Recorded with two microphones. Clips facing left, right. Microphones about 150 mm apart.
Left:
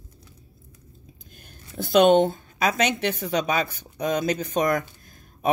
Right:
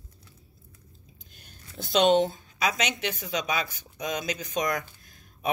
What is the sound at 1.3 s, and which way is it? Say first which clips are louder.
A woman's voice: left 5 dB; 50° left (ahead or behind).